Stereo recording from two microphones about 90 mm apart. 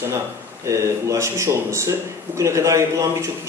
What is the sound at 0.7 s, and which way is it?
Speech, 35° right (ahead or behind).